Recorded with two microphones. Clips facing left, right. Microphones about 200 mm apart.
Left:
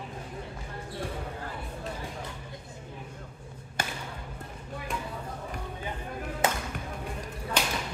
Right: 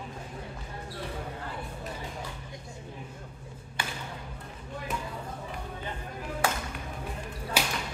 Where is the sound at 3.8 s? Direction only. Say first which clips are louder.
Left 2 dB; 45° left (ahead or behind).